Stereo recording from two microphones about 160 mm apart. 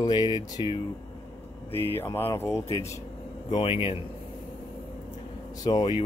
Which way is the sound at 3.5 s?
35° left (ahead or behind).